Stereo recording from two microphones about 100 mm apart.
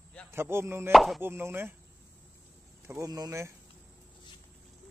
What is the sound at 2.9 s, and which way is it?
Speech, 35° right (ahead or behind).